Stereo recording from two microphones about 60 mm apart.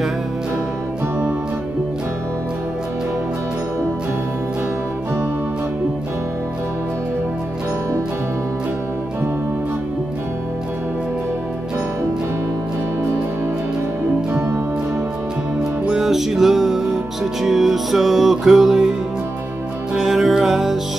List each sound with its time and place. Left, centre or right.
14.3 s music: right
16.0 s music: centre